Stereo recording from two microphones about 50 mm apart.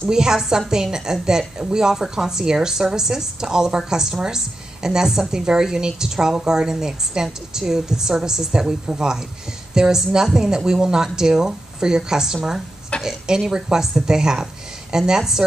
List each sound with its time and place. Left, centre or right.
0.1 s a woman's voice: centre